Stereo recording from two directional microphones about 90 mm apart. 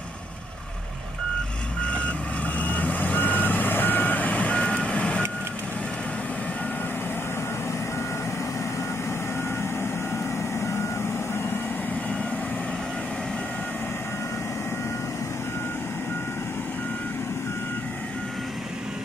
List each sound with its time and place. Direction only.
1.8 s reversing beeps: 15° left (ahead or behind)
10.6 s reversing beeps: 30° left (ahead or behind)